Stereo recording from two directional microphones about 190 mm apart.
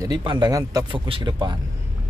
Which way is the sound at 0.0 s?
25° right (ahead or behind).